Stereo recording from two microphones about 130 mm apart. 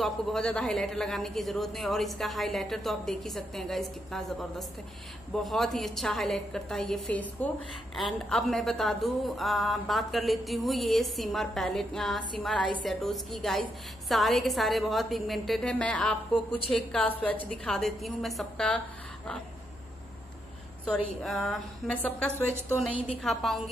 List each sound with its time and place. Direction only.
0.0 s a woman's voice: 5° left (ahead or behind)
20.8 s a woman's voice: 5° left (ahead or behind)
21.9 s a woman's voice: 10° left (ahead or behind)
23.0 s a woman's voice: centre (ahead or behind)